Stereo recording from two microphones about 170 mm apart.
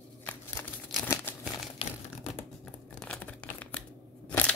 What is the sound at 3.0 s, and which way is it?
Tearing, 5° left (ahead or behind).